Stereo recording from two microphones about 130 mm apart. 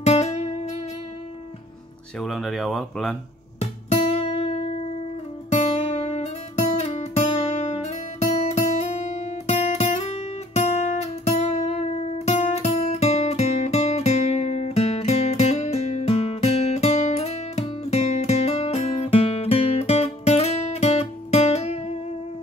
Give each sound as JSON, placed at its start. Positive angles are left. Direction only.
{"t": 0.0, "sound": "music", "side_deg": 55}
{"t": 2.1, "sound": "speech", "side_deg": 0}
{"t": 4.1, "sound": "music", "side_deg": 55}
{"t": 8.5, "sound": "guitar", "side_deg": 55}
{"t": 17.8, "sound": "music", "side_deg": 55}